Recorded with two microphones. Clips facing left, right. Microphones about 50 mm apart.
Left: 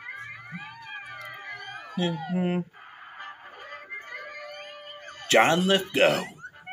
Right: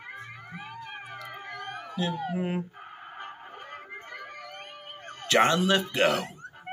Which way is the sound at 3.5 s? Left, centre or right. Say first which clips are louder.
Even; left.